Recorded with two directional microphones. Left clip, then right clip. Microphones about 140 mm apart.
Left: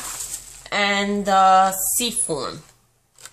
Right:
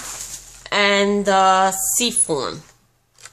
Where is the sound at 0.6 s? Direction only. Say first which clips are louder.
Right 4 dB; 45° right (ahead or behind).